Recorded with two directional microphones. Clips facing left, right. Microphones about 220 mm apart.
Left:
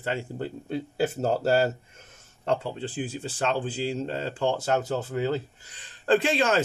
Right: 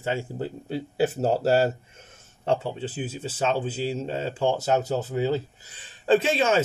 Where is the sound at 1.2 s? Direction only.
30° right (ahead or behind).